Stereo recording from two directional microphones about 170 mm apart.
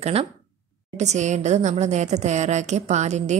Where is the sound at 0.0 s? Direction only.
35° right (ahead or behind).